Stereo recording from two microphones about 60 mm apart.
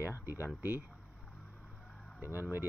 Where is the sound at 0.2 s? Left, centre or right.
Right.